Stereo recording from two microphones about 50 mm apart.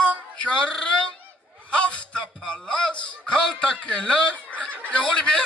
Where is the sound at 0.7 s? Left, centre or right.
Centre.